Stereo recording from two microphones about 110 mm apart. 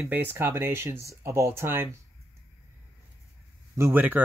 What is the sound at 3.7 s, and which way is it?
Speech, 20° right (ahead or behind).